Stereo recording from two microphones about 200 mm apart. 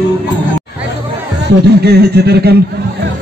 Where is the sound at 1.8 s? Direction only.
55° right (ahead or behind).